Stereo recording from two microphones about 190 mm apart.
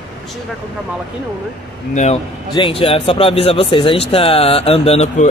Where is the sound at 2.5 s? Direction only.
30° left (ahead or behind).